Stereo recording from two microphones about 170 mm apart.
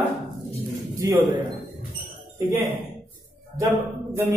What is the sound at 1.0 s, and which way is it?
Speech, 15° right (ahead or behind).